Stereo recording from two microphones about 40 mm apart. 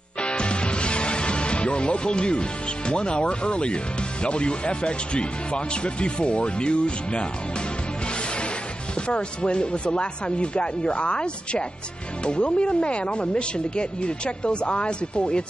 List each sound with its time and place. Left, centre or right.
0.2 s music: left
2.9 s speech: left
8.9 s speech: left